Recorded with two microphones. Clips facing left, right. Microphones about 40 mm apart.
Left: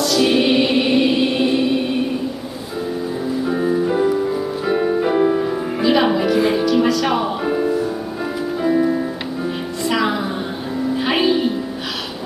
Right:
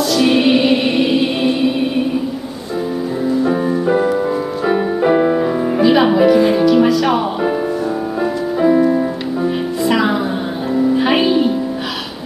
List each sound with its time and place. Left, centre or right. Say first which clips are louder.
0.0 s music: right 3 dB; centre
3.4 s music: right 3 dB; centre